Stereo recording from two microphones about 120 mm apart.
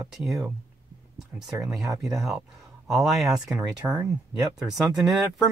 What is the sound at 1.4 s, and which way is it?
Speech, 30° right (ahead or behind).